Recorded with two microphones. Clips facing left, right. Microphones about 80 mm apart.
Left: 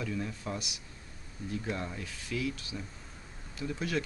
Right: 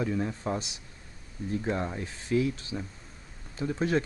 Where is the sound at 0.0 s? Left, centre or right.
Right.